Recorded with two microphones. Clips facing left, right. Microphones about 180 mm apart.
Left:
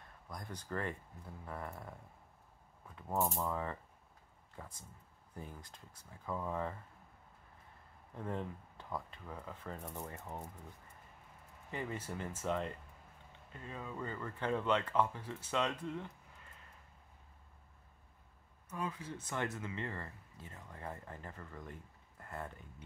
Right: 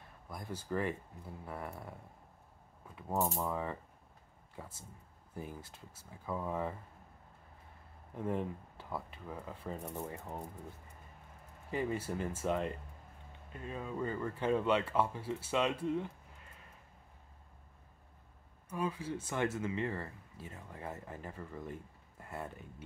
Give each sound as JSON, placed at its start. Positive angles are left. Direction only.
{"t": 0.3, "sound": "speech", "side_deg": -5}
{"t": 3.0, "sound": "speech", "side_deg": -15}
{"t": 8.2, "sound": "speech", "side_deg": -10}
{"t": 11.7, "sound": "speech", "side_deg": -10}
{"t": 18.7, "sound": "speech", "side_deg": -10}